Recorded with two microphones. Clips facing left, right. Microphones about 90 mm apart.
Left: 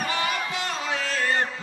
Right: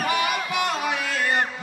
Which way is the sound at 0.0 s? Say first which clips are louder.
Right 3 dB; 15° right (ahead or behind).